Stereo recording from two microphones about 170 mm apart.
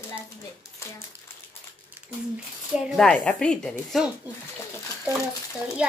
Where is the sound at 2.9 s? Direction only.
5° left (ahead or behind).